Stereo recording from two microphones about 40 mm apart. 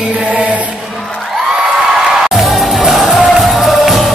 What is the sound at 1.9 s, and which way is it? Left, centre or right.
Music, centre.